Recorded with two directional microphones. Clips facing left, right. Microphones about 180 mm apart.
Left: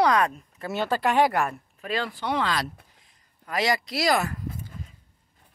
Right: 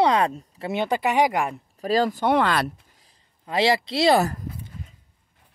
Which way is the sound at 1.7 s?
40° right (ahead or behind).